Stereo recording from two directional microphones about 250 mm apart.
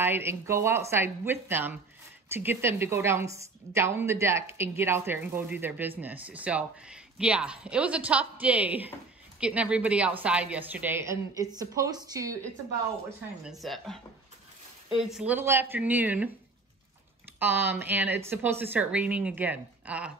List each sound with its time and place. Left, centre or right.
0.0 s speech: centre
13.4 s speech: centre
17.4 s speech: centre